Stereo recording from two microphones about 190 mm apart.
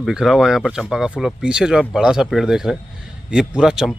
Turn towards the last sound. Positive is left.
turn(degrees=0)  # may be behind; listen again after turning